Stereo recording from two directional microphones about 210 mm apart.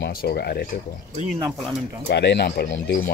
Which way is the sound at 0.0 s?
50° left (ahead or behind).